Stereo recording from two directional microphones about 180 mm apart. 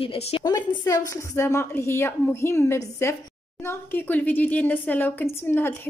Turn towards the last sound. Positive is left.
turn(degrees=10)  # may be behind; listen again after turning